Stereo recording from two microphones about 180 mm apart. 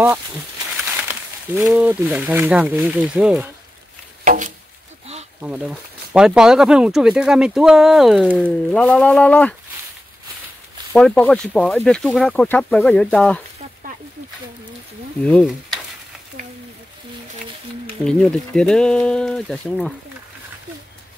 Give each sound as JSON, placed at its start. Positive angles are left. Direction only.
{"t": 0.7, "sound": "a sound", "side_deg": 0}
{"t": 1.6, "sound": "speech", "side_deg": -5}
{"t": 4.2, "sound": "a sound", "side_deg": -45}
{"t": 5.4, "sound": "speech", "side_deg": -5}
{"t": 11.0, "sound": "speech", "side_deg": 5}
{"t": 18.0, "sound": "speech", "side_deg": 5}